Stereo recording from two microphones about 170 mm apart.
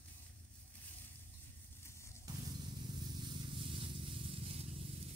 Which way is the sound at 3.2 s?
30° right (ahead or behind).